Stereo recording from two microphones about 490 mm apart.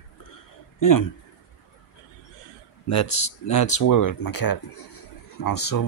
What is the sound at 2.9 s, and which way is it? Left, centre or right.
Speech, left.